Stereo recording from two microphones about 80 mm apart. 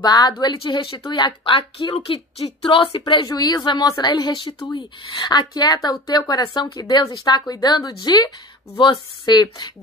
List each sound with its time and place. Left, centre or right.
0.0 s a woman's voice: left
1.0 s speech: left
3.3 s a woman's voice: left
3.8 s speech: left
4.1 s speech: left
4.6 s speech: left
5.1 s a woman's voice: left
8.7 s a woman's voice: left